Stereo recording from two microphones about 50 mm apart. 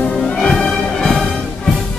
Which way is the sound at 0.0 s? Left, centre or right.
Centre.